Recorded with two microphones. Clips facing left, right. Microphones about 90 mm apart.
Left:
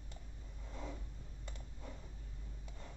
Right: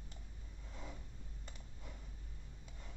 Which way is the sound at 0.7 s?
15° left (ahead or behind).